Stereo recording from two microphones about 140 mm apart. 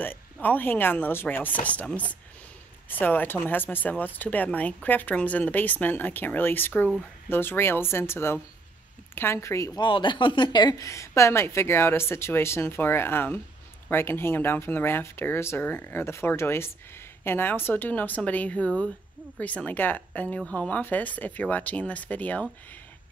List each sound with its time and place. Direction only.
0.0 s speech: 15° left (ahead or behind)
9.8 s speech: 35° left (ahead or behind); by 22.5 s 10° left (ahead or behind)